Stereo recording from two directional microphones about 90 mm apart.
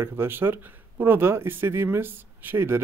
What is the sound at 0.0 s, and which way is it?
Speech, 25° right (ahead or behind).